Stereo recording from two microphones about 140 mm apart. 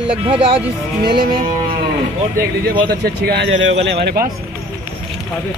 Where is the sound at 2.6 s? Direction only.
90° right.